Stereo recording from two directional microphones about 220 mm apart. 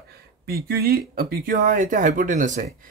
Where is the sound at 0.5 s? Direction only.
45° right (ahead or behind).